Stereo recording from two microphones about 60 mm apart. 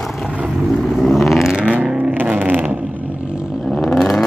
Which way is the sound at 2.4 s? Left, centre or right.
Right.